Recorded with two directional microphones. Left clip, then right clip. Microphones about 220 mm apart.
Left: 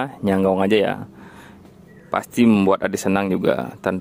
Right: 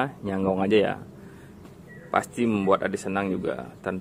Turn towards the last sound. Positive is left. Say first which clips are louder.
# left 10 dB
turn(degrees=50)  # may be behind; listen again after turning